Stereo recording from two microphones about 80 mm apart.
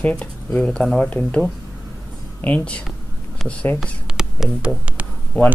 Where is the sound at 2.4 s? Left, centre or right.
Centre.